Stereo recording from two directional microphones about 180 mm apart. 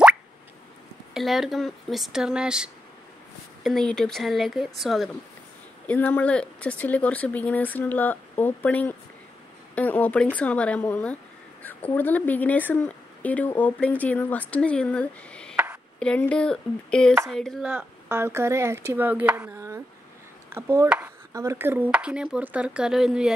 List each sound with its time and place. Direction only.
1.1 s speech: centre (ahead or behind)
15.5 s a sound: 10° right (ahead or behind)
16.0 s speech: 5° left (ahead or behind)